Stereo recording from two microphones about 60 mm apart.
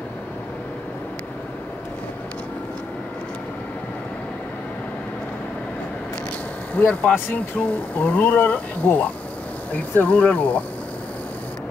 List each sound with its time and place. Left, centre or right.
6.9 s speech: left